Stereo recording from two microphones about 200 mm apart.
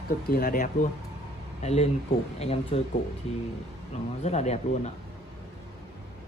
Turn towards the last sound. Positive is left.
turn(degrees=35)  # may be behind; listen again after turning